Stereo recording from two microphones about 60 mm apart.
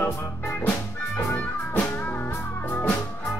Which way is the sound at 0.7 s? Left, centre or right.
Left.